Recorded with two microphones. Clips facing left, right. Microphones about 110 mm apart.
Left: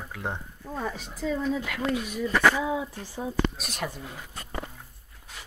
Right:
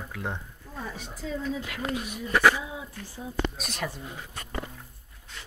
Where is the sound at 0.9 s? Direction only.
70° left (ahead or behind).